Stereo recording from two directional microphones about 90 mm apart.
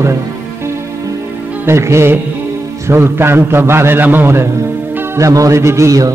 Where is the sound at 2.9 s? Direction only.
30° right (ahead or behind).